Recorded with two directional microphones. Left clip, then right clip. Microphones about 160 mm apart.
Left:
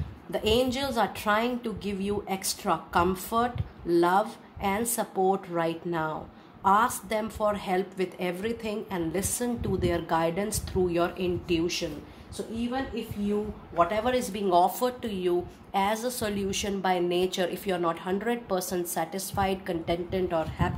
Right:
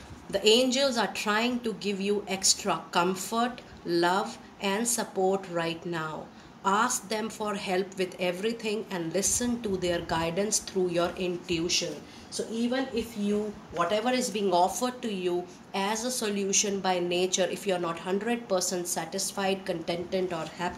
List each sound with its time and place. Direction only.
0.3 s speech: 50° left (ahead or behind)
13.7 s speech: 55° left (ahead or behind)